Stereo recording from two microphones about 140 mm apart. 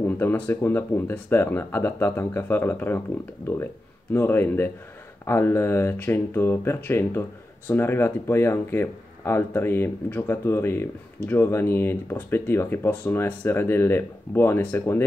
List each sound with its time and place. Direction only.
0.0 s speech: 15° left (ahead or behind)
4.1 s speech: 15° left (ahead or behind)